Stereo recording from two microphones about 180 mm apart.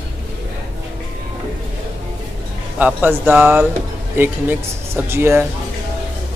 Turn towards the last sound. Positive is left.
turn(degrees=-15)  # may be behind; listen again after turning